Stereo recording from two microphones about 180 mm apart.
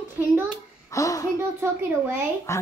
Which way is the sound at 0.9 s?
20° left (ahead or behind).